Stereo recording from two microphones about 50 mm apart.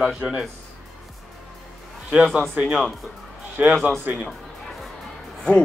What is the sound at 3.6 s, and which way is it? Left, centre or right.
Speech, right.